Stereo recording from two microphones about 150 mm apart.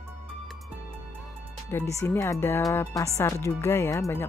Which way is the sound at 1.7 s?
15° left (ahead or behind).